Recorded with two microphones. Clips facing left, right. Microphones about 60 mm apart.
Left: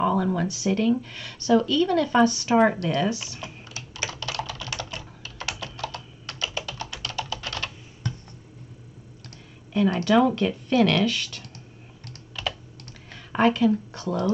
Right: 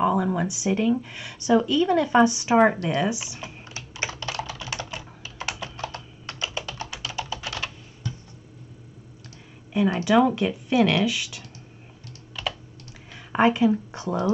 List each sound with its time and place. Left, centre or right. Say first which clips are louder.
0.0 s speech: right 1 dB; centre
3.6 s typing: right 2 dB; right
7.2 s typing: even; centre
8.0 s a sound: left 2 dB; left
9.8 s speech: even; centre
13.3 s speech: right 1 dB; centre